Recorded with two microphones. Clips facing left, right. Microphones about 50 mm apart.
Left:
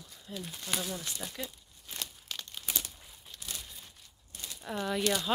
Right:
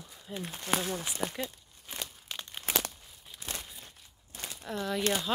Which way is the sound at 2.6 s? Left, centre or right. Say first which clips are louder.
Right 8 dB; right.